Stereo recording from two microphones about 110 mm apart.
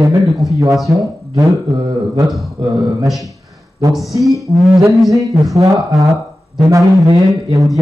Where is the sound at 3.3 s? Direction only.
30° right (ahead or behind).